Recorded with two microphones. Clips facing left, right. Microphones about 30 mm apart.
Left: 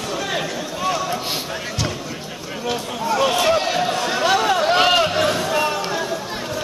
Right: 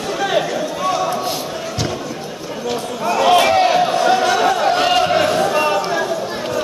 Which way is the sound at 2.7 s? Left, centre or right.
Centre.